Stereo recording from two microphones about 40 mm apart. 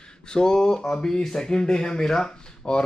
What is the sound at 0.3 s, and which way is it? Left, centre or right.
Speech, centre.